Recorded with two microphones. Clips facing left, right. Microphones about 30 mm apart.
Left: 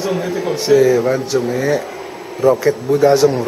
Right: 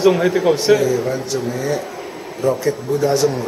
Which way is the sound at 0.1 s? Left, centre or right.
Right.